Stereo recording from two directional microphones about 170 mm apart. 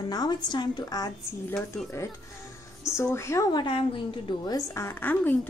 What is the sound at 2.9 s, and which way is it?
A woman's voice, 15° left (ahead or behind).